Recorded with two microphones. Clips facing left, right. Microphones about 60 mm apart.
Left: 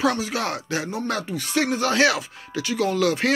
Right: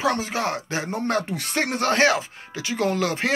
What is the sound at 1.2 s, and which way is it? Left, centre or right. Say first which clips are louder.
Speech: left 2 dB; right.